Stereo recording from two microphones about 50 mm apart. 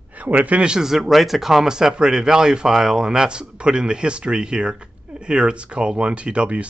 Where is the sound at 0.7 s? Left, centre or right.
Centre.